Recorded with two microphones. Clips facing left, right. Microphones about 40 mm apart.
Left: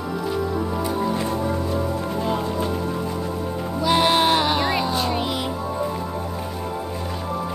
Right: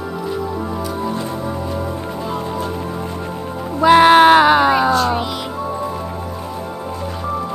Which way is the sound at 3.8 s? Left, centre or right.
Right.